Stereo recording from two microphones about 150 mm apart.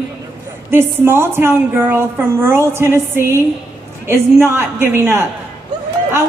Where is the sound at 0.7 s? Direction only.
15° right (ahead or behind).